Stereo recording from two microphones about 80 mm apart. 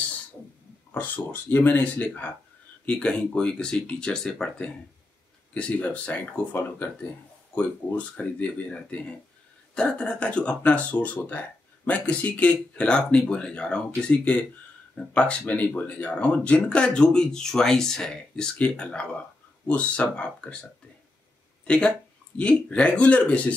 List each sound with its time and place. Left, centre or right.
0.9 s speech: left
21.6 s speech: centre